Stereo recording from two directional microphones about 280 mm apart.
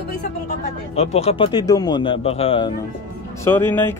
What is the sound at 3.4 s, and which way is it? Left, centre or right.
Speech, centre.